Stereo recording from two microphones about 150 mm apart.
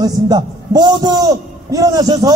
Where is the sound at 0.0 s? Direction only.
30° right (ahead or behind).